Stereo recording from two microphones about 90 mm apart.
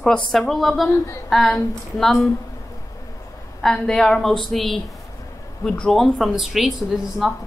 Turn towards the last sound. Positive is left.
turn(degrees=-5)  # may be behind; listen again after turning